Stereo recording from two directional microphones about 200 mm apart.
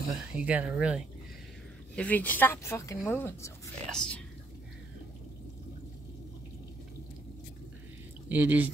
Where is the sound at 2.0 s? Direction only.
10° left (ahead or behind).